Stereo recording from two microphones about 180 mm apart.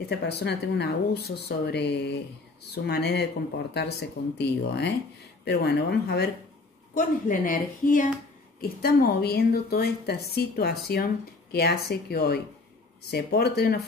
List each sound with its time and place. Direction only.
0.1 s a woman's voice: 65° left (ahead or behind)
6.9 s a woman's voice: 50° left (ahead or behind)